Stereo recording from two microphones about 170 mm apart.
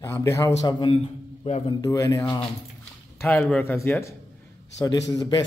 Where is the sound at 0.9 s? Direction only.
35° left (ahead or behind).